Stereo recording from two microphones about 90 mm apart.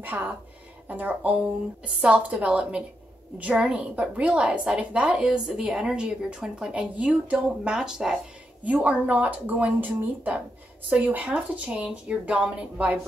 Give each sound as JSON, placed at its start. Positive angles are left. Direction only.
{"t": 0.0, "sound": "a woman's voice", "side_deg": -20}